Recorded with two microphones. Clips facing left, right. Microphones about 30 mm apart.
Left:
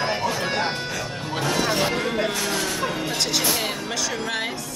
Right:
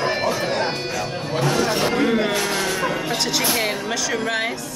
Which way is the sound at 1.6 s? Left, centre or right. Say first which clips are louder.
Right 2 dB; centre.